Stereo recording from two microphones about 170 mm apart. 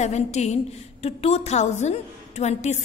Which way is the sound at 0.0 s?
40° left (ahead or behind).